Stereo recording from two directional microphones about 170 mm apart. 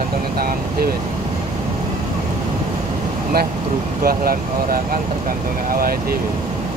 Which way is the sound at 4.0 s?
60° right (ahead or behind).